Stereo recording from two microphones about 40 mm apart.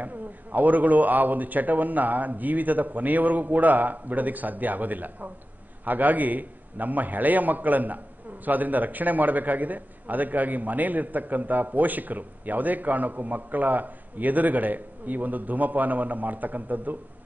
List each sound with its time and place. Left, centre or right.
0.0 s a man's voice: right